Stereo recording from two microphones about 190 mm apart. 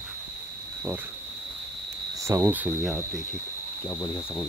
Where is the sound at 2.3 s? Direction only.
10° right (ahead or behind).